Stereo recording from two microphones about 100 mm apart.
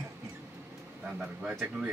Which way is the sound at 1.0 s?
10° right (ahead or behind).